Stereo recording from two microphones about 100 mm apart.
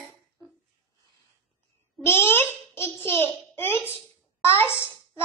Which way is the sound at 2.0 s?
25° left (ahead or behind).